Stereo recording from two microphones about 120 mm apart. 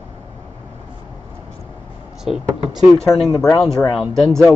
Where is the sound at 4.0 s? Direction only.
Centre (ahead or behind).